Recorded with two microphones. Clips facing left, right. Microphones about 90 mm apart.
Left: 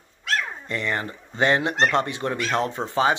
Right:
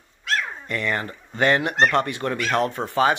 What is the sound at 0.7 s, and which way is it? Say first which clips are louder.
Speech: right 2 dB; 25° left (ahead or behind).